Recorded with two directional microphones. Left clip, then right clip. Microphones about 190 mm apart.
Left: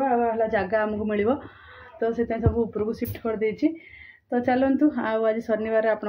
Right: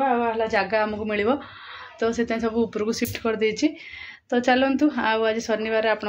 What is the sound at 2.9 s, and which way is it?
Speech, 15° right (ahead or behind).